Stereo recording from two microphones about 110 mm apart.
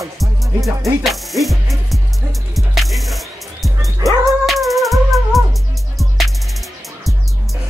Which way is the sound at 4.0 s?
30° right (ahead or behind).